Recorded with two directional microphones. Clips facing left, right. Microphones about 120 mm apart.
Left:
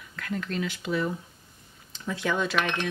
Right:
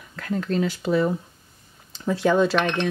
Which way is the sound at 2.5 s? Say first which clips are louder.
Right 5 dB; 5° left (ahead or behind).